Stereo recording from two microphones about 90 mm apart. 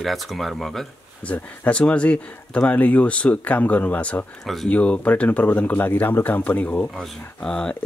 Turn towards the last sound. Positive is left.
turn(degrees=10)  # may be behind; listen again after turning